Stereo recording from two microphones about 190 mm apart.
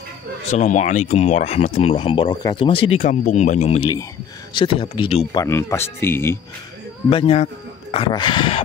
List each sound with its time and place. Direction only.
0.5 s speech: 35° left (ahead or behind); by 6.4 s 15° left (ahead or behind)
7.1 s speech: 30° left (ahead or behind)